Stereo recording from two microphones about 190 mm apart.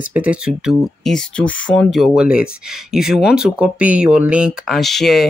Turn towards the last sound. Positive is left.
turn(degrees=0)  # may be behind; listen again after turning